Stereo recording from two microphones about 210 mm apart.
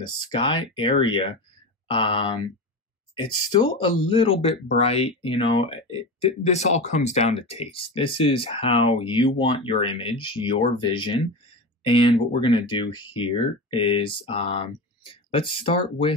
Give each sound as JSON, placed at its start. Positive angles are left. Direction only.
{"t": 0.0, "sound": "speech", "side_deg": 20}